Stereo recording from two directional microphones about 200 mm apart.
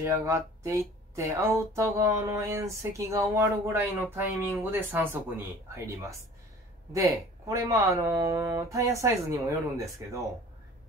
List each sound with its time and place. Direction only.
0.0 s speech: 15° right (ahead or behind)